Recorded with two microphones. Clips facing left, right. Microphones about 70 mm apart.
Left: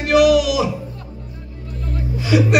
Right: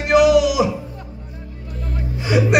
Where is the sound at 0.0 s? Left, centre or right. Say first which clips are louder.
Even; right.